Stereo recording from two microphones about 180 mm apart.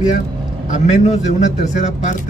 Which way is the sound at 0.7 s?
40° left (ahead or behind).